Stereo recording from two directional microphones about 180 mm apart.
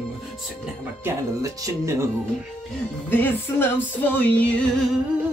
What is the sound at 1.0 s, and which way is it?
Speech, 15° right (ahead or behind).